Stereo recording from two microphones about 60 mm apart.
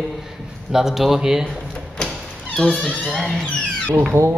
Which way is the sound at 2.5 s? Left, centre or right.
Centre.